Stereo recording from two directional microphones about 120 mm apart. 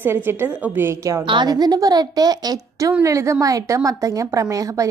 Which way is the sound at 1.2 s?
40° right (ahead or behind).